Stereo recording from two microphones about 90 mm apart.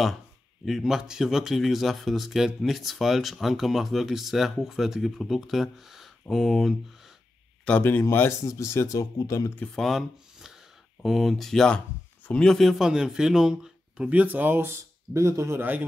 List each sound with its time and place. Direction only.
0.7 s speech: 5° right (ahead or behind)
7.8 s speech: 25° left (ahead or behind)
9.8 s speech: centre (ahead or behind); by 14.7 s 20° right (ahead or behind)
15.1 s speech: 35° right (ahead or behind)